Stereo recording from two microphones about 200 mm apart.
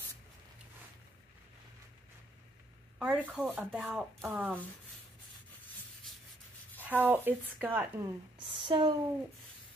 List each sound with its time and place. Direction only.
3.0 s speech: 5° right (ahead or behind)
6.8 s a woman's voice: 10° right (ahead or behind)
8.5 s speech: 25° right (ahead or behind)